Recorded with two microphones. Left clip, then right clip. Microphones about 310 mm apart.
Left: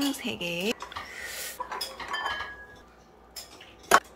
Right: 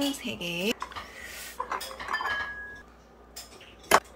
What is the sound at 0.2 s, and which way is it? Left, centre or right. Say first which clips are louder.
Dishes: left 1 dB; centre.